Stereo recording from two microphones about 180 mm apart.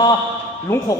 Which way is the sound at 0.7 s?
10° left (ahead or behind).